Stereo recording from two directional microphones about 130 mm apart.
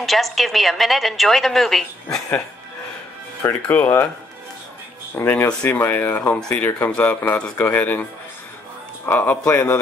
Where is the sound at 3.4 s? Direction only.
15° left (ahead or behind).